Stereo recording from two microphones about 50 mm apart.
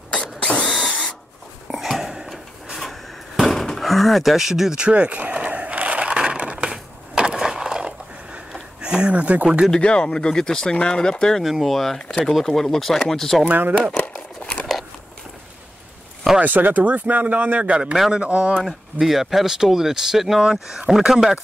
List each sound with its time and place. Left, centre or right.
0.1 s mechanisms: left
0.8 s printer: centre
1.7 s a sound: centre
4.8 s a sound: right
8.8 s speech: centre
9.8 s speech: centre
11.4 s speech: centre
13.5 s speech: right
14.1 s a sound: left
16.3 s speech: right
18.6 s speech: centre